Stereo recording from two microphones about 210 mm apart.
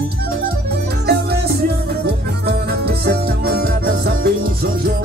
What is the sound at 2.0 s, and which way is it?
Music, 50° right (ahead or behind).